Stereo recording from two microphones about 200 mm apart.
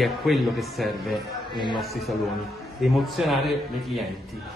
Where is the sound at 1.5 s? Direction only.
25° left (ahead or behind).